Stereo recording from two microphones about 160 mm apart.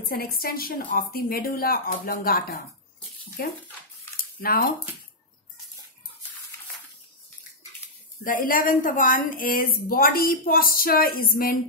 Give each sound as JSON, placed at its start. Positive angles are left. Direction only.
{"t": 0.1, "sound": "a woman's voice", "side_deg": 70}
{"t": 4.2, "sound": "a sound", "side_deg": 65}
{"t": 8.2, "sound": "a woman's voice", "side_deg": 60}